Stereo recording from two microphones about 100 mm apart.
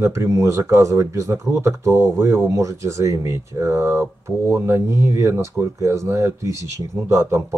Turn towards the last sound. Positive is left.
turn(degrees=-30)  # may be behind; listen again after turning